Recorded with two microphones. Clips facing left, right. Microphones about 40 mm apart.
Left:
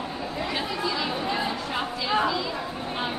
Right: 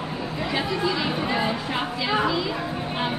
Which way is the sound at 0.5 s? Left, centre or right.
Centre.